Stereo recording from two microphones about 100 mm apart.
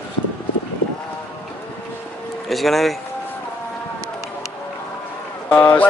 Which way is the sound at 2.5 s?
Centre (ahead or behind).